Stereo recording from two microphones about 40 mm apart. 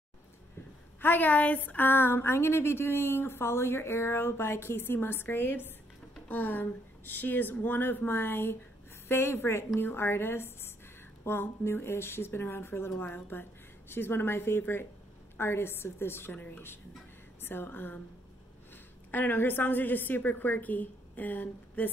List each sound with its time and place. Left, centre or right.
1.0 s speech: left
6.2 s speech: left
9.8 s a woman's voice: left
13.0 s a woman's voice: left
17.4 s speech: left
19.0 s a woman's voice: left